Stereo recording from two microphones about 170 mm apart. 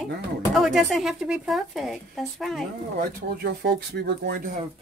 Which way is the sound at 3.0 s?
75° right (ahead or behind).